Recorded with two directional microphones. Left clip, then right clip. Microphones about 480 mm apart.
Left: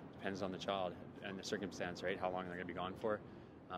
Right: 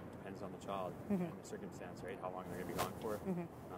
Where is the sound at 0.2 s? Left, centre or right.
Left.